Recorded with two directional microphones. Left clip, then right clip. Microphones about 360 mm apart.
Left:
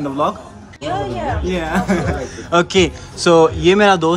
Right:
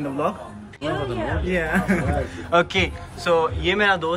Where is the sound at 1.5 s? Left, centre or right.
Centre.